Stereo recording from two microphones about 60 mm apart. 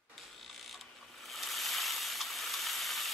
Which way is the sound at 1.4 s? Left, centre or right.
Centre.